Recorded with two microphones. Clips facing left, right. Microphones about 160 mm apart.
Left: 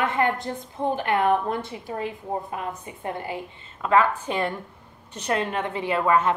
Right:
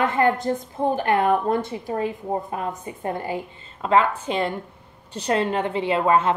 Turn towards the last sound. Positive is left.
turn(degrees=-25)  # may be behind; listen again after turning